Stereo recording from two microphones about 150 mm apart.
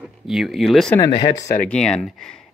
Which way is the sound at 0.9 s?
20° left (ahead or behind).